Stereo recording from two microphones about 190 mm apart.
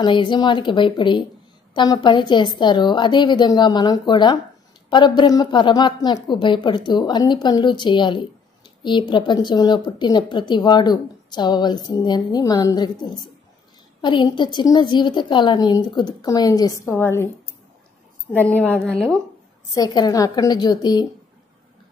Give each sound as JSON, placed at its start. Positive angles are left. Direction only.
{"t": 0.0, "sound": "a woman's voice", "side_deg": 25}
{"t": 18.3, "sound": "a woman's voice", "side_deg": 10}
{"t": 19.7, "sound": "a woman's voice", "side_deg": 20}